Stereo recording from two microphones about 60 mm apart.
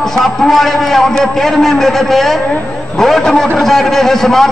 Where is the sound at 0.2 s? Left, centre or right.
Centre.